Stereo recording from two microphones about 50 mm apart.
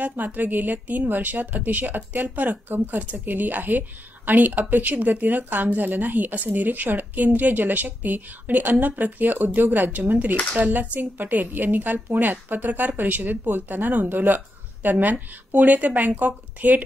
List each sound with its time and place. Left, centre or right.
0.0 s a woman's voice: right